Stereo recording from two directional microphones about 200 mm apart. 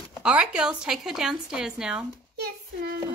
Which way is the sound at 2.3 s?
55° right (ahead or behind).